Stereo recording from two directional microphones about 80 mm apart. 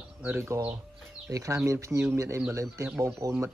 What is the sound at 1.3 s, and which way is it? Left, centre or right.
Speech, right.